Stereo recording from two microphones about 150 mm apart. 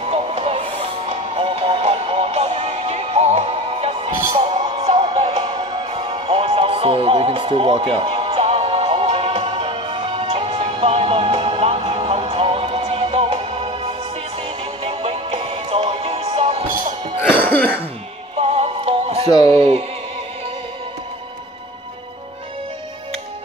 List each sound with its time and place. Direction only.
0.1 s music: 40° right (ahead or behind)
17.5 s throat clearing: 10° left (ahead or behind)
18.6 s music: 45° right (ahead or behind)
19.2 s speech: 25° left (ahead or behind)